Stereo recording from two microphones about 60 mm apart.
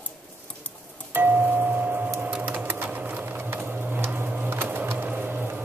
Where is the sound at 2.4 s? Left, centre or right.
Right.